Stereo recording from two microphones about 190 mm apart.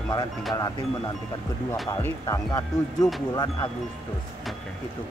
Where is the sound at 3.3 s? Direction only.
20° left (ahead or behind).